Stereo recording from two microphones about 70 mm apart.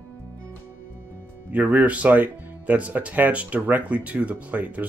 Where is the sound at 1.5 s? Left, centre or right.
Right.